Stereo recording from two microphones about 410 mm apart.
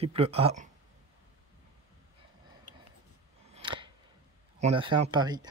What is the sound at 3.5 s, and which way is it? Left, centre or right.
Scissors, centre.